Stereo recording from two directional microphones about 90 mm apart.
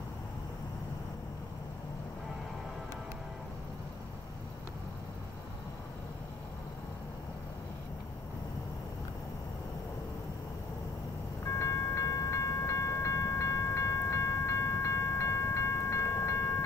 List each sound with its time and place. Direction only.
11.4 s train: 35° left (ahead or behind)